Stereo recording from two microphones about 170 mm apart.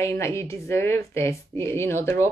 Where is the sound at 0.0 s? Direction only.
15° left (ahead or behind).